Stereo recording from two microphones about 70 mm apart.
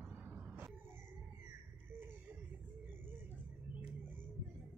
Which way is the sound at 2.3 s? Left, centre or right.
Right.